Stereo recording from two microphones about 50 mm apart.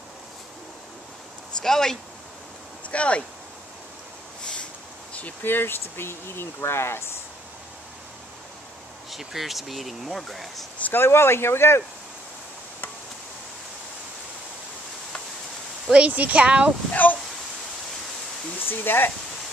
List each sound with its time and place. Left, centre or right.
1.6 s speech: centre
2.9 s speech: left
5.4 s speech: left
9.1 s speech: centre
10.8 s speech: left
15.9 s speech: right
16.9 s speech: left
18.7 s speech: left